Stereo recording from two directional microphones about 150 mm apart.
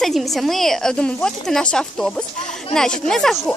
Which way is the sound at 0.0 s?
Centre (ahead or behind).